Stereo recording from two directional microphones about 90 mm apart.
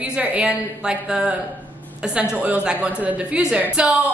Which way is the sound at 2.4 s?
15° right (ahead or behind).